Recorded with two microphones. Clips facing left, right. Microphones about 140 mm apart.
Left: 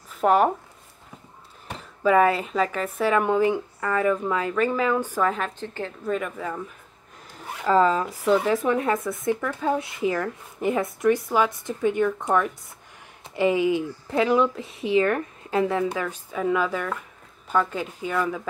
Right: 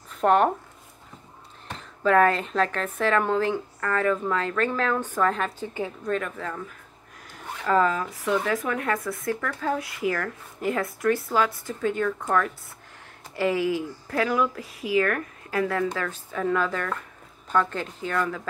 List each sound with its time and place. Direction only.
0.1 s speech: 5° left (ahead or behind)
1.7 s a woman's voice: 10° left (ahead or behind)
5.6 s a woman's voice: 10° right (ahead or behind)
6.0 s a woman's voice: 5° left (ahead or behind)
7.6 s a woman's voice: 30° left (ahead or behind); by 18.5 s 10° left (ahead or behind)